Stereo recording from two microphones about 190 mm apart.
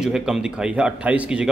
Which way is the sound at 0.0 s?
5° right (ahead or behind).